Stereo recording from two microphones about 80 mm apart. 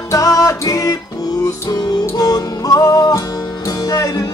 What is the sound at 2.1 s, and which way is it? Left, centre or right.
Music, left.